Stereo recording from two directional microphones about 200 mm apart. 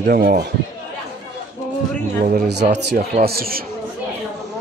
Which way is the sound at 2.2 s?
50° right (ahead or behind).